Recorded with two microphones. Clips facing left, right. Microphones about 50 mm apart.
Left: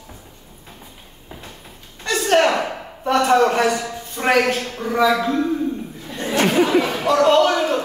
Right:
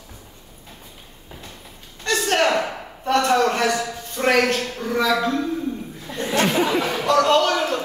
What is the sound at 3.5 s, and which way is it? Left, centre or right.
A man's voice, centre.